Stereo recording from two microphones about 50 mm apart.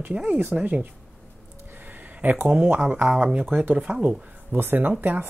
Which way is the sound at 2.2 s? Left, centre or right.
Right.